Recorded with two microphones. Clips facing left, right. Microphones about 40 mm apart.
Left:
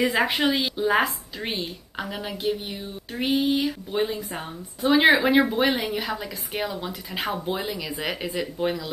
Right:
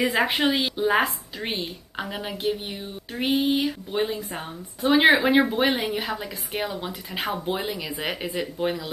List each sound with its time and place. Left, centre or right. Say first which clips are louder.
0.0 s a woman's voice: even; centre